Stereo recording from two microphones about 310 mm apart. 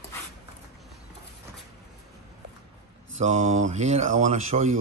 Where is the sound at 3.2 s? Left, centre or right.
Right.